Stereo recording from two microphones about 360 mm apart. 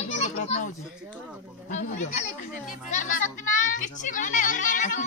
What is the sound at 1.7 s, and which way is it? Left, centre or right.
Speech, centre.